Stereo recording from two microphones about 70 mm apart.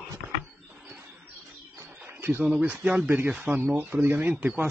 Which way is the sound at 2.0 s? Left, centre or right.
Right.